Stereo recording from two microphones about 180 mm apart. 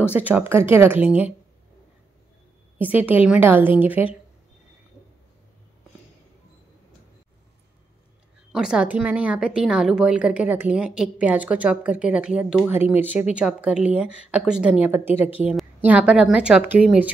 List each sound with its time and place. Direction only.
0.1 s a woman's voice: 10° right (ahead or behind)
3.0 s a woman's voice: 10° right (ahead or behind)
8.5 s a woman's voice: 5° right (ahead or behind)